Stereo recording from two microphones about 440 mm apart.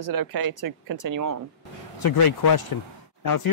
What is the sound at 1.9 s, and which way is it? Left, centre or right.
A man's voice, left.